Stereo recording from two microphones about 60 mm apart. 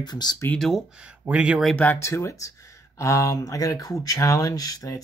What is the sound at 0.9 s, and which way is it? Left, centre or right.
Speech, right.